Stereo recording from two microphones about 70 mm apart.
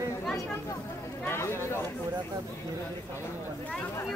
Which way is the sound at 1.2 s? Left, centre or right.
Left.